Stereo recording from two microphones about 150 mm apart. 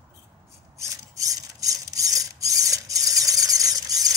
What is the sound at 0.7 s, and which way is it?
Ratchet, 20° right (ahead or behind).